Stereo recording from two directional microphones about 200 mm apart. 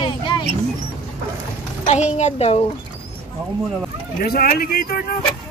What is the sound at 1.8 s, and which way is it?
Speech, 35° left (ahead or behind).